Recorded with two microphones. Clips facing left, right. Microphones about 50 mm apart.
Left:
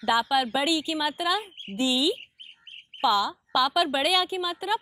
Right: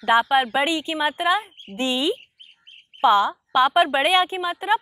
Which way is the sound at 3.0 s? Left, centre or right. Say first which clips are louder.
Right 6 dB; right.